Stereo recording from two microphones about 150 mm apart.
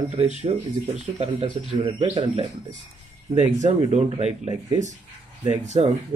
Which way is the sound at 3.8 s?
45° right (ahead or behind).